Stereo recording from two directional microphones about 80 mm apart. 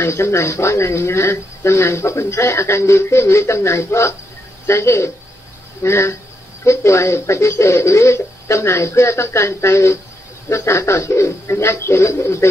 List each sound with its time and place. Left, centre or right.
0.0 s speech: left